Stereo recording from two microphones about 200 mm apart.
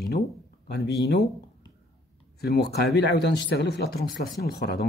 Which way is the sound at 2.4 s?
55° left (ahead or behind).